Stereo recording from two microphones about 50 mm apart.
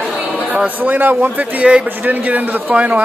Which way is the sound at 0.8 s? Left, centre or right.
Right.